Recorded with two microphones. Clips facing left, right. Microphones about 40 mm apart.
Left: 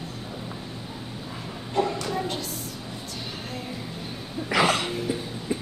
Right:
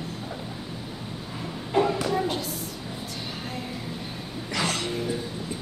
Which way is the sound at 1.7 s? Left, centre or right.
Centre.